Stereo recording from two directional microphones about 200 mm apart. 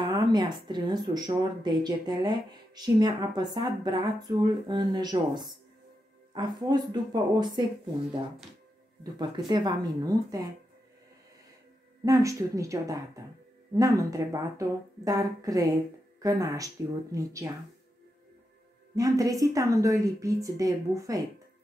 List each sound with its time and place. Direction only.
0.0 s speech: 20° right (ahead or behind)
9.5 s speech: 20° right (ahead or behind)
12.0 s a woman's voice: 15° right (ahead or behind)
18.9 s a woman's voice: 15° right (ahead or behind)